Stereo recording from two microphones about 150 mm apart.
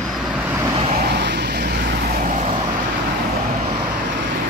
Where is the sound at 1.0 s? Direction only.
90° right; by 2.6 s 50° right (ahead or behind).